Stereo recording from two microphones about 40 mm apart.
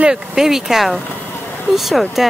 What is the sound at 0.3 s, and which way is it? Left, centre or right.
A woman's voice, centre.